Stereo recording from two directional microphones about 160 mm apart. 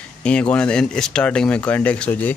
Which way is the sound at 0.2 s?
5° left (ahead or behind).